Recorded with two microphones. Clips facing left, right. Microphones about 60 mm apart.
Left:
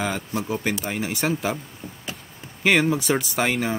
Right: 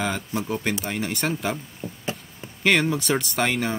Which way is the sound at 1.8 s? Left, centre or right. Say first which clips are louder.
Right 4 dB; left.